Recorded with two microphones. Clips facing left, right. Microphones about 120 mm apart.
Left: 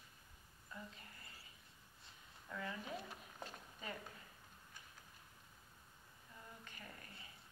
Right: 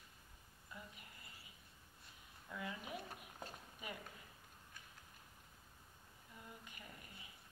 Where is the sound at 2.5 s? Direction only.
10° right (ahead or behind).